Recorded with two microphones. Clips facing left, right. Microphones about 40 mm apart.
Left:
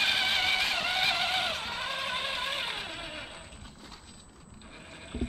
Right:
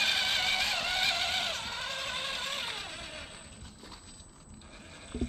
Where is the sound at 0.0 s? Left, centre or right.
Centre.